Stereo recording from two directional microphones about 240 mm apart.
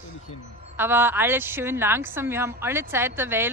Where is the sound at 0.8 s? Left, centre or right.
Centre.